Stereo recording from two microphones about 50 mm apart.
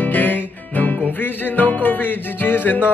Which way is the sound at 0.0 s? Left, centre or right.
Left.